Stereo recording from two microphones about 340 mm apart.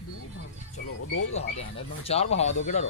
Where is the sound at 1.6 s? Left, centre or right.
Centre.